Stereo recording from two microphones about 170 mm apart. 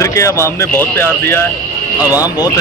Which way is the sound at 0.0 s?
20° left (ahead or behind).